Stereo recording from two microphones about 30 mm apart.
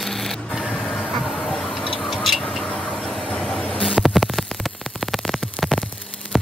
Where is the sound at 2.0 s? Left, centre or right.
Centre.